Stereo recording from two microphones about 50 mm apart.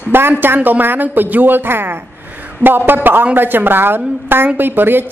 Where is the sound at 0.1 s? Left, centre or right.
Right.